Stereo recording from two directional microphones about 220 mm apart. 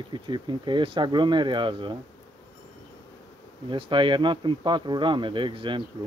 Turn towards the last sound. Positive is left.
turn(degrees=-20)  # may be behind; listen again after turning